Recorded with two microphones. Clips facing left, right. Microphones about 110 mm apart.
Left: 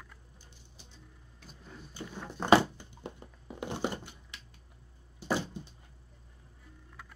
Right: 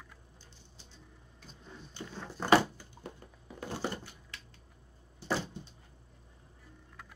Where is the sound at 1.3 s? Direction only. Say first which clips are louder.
Left 1 dB; 5° left (ahead or behind); by 4.4 s 20° left (ahead or behind).